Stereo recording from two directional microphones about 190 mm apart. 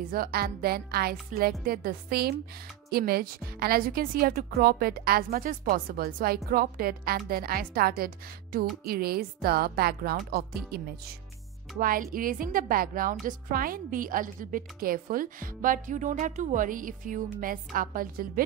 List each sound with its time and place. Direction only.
0.1 s a woman's voice: 50° right (ahead or behind)